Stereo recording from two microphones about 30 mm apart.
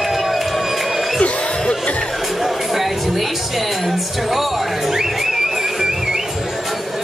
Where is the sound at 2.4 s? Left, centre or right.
Centre.